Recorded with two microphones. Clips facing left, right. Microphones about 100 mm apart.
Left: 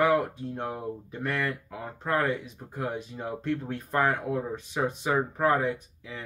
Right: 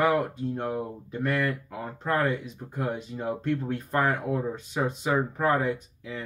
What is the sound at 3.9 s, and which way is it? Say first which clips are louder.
Speech: even; 5° left (ahead or behind).